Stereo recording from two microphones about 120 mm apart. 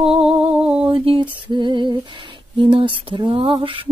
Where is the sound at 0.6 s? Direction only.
10° right (ahead or behind).